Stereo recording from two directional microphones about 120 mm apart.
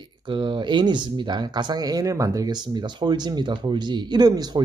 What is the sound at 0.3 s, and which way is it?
Speech, 45° right (ahead or behind).